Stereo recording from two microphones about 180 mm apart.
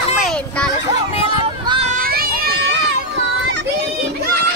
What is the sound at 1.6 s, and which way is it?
Children playing, 35° right (ahead or behind).